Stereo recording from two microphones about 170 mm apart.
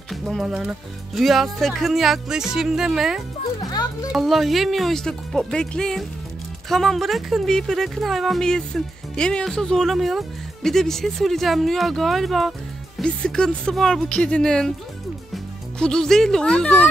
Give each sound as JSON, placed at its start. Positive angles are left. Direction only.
{"t": 0.1, "sound": "speech", "side_deg": 0}
{"t": 3.6, "sound": "speech", "side_deg": 20}
{"t": 4.1, "sound": "speech", "side_deg": 0}